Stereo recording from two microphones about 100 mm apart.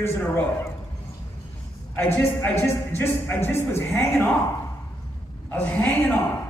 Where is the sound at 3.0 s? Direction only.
20° left (ahead or behind).